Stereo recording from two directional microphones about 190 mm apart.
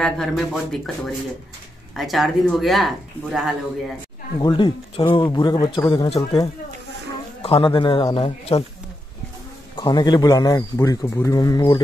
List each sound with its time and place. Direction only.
0.0 s speech: centre (ahead or behind)
4.4 s a man's voice: 25° left (ahead or behind)
7.4 s a man's voice: 30° left (ahead or behind)
9.8 s a man's voice: 25° left (ahead or behind)